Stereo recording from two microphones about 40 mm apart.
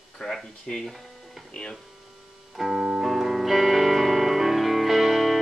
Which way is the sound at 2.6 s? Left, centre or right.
Centre.